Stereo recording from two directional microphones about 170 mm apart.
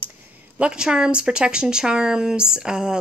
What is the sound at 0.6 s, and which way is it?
A woman's voice, 5° right (ahead or behind).